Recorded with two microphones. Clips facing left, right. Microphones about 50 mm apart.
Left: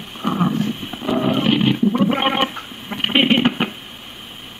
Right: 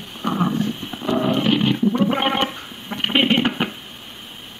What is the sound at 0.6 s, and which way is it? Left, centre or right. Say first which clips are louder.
Roaring cats: left 1 dB; centre.